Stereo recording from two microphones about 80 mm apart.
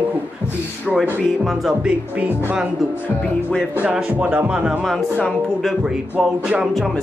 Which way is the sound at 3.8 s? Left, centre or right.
Centre.